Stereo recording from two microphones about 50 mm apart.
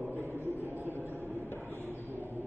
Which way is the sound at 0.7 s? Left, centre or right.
Right.